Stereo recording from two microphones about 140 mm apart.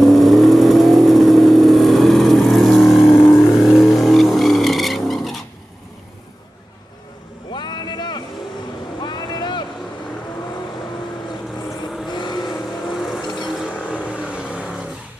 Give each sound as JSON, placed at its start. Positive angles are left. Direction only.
{"t": 0.0, "sound": "vehicle", "side_deg": 0}
{"t": 7.5, "sound": "vehicle", "side_deg": 35}
{"t": 9.0, "sound": "boat", "side_deg": 30}
{"t": 12.1, "sound": "vehicle", "side_deg": 30}
{"t": 12.4, "sound": "vehicle", "side_deg": 0}
{"t": 14.1, "sound": "vehicle", "side_deg": -10}